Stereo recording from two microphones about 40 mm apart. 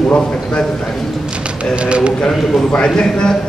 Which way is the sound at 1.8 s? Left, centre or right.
Right.